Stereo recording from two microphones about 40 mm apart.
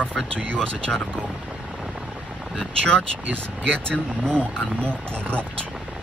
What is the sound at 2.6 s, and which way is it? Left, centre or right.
Speech, left.